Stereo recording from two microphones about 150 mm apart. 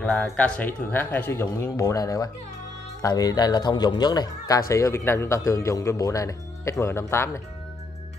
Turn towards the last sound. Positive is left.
turn(degrees=20)  # may be behind; listen again after turning